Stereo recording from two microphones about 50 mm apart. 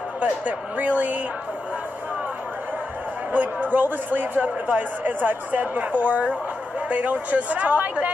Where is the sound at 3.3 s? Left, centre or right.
Right.